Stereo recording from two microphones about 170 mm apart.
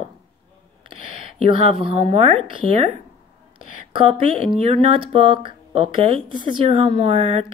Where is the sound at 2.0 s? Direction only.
40° right (ahead or behind).